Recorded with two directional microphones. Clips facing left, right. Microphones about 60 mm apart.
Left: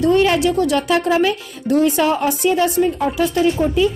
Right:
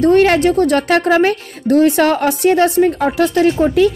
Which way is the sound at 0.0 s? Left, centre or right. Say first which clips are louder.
Right 4 dB; right.